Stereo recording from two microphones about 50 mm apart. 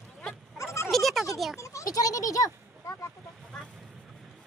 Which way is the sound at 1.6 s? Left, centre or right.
Left.